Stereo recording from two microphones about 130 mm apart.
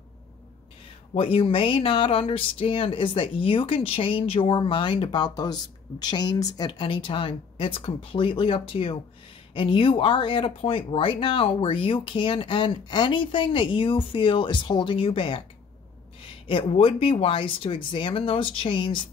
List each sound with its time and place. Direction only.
1.1 s speech: 45° left (ahead or behind)